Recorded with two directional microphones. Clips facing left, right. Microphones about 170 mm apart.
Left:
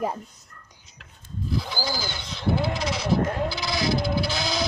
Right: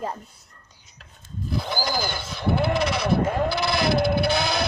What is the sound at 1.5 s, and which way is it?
Sheep, 55° right (ahead or behind).